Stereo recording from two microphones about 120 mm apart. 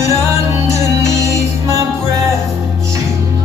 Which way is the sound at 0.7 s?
25° right (ahead or behind).